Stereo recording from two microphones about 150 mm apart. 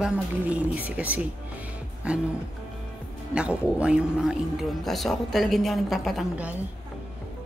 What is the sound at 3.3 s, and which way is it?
A woman's voice, 10° right (ahead or behind).